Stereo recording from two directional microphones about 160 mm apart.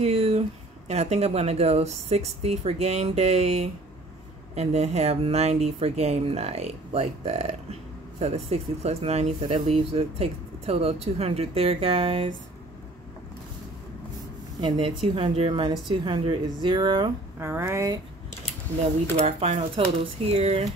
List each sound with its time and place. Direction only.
0.0 s speech: 40° right (ahead or behind)
14.6 s speech: 35° right (ahead or behind)
17.4 s speech: 15° right (ahead or behind)
19.1 s speech: 45° right (ahead or behind)